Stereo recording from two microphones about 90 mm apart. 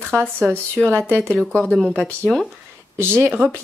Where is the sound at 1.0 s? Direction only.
25° right (ahead or behind).